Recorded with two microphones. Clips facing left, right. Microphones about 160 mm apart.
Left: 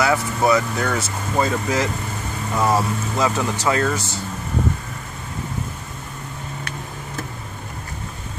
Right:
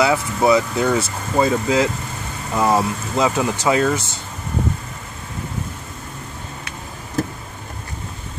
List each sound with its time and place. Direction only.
0.0 s speech: 15° right (ahead or behind)